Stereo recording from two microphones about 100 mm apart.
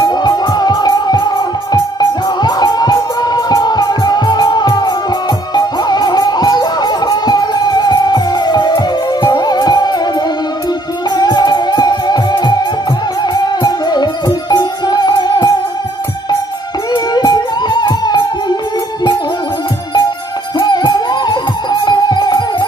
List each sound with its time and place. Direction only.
0.0 s music: 45° left (ahead or behind)
11.1 s music: 40° left (ahead or behind)
16.9 s music: 45° left (ahead or behind)
20.6 s music: 45° left (ahead or behind)